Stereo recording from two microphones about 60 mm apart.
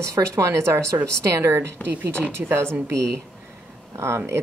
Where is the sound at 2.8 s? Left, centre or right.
Right.